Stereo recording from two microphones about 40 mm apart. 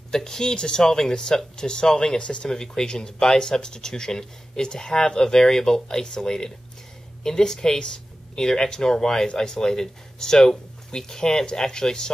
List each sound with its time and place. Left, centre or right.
0.1 s speech: centre